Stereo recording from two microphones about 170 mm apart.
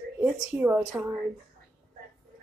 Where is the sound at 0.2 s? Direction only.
10° right (ahead or behind).